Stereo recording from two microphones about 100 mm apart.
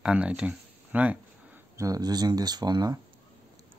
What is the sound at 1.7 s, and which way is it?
Speech, 35° right (ahead or behind).